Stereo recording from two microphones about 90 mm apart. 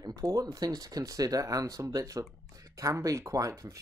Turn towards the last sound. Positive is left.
turn(degrees=-40)  # may be behind; listen again after turning